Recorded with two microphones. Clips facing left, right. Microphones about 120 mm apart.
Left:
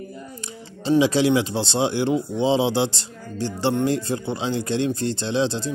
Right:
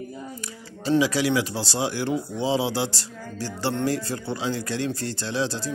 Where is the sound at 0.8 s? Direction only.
25° left (ahead or behind).